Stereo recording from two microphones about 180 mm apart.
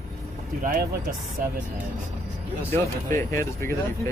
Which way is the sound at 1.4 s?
50° right (ahead or behind).